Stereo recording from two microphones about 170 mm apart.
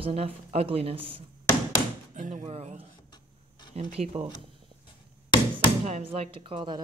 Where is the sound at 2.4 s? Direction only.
40° right (ahead or behind).